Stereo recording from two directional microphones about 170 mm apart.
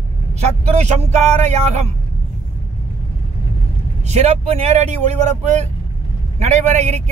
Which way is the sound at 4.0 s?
40° right (ahead or behind).